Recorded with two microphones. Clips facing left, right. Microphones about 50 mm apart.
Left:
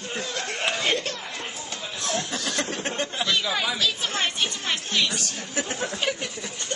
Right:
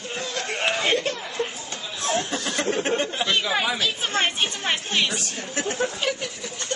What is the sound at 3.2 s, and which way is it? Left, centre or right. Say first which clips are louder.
A woman's voice: even; right.